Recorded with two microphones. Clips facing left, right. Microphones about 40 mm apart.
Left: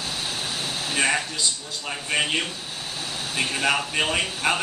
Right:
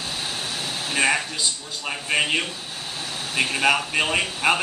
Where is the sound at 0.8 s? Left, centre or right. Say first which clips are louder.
Right 2 dB; centre.